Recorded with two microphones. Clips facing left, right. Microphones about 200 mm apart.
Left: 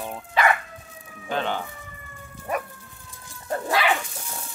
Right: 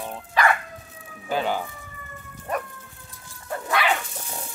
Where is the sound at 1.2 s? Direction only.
5° right (ahead or behind).